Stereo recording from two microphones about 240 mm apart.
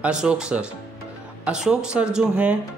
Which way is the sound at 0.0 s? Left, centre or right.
Centre.